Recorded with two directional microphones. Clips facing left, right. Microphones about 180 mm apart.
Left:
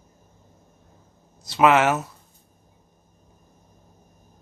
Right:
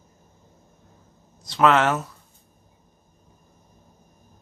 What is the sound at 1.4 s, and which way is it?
Speech, 10° left (ahead or behind).